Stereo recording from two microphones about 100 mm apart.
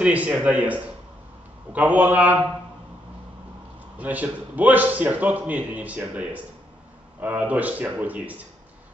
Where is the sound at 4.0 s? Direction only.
15° right (ahead or behind).